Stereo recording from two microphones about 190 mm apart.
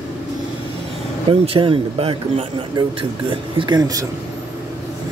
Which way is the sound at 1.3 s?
25° right (ahead or behind).